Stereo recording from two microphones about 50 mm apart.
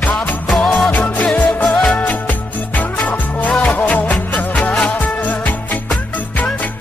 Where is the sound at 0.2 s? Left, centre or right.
Left.